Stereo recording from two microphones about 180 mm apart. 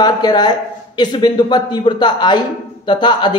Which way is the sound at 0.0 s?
25° left (ahead or behind).